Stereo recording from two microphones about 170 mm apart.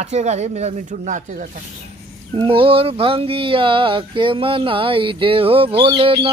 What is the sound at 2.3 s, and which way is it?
Speech, 30° right (ahead or behind).